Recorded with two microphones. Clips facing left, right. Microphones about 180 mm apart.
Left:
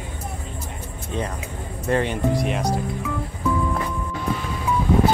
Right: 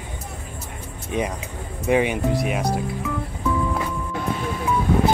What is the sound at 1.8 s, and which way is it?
Speech, 10° right (ahead or behind).